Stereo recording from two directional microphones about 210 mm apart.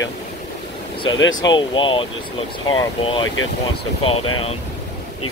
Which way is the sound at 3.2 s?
75° left (ahead or behind).